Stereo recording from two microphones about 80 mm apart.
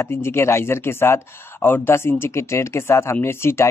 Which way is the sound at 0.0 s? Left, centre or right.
Left.